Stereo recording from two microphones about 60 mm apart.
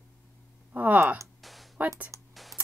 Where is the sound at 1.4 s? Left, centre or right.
Centre.